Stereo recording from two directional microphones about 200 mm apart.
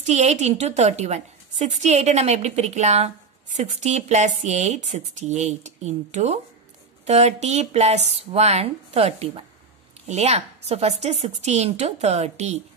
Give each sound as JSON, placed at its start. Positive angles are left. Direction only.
{"t": 0.0, "sound": "a woman's voice", "side_deg": -35}